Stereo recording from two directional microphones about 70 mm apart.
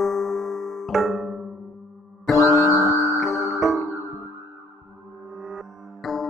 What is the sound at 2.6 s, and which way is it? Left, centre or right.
Music, left.